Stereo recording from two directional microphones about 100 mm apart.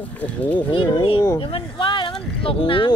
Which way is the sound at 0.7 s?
55° left (ahead or behind).